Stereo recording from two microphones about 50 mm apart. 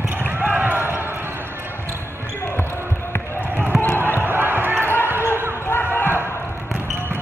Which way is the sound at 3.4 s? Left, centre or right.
Right.